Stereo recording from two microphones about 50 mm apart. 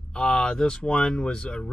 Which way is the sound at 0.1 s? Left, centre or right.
Centre.